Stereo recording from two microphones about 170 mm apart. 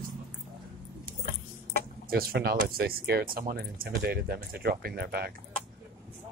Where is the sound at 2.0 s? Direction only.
65° right (ahead or behind).